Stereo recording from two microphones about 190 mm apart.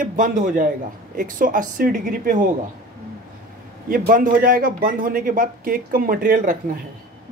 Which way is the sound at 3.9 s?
50° right (ahead or behind).